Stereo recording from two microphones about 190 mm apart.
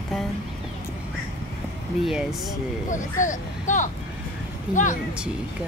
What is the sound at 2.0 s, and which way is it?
Speech, centre (ahead or behind).